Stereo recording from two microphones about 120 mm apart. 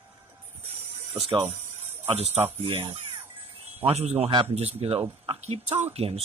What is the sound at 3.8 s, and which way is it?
Speech, 60° right (ahead or behind).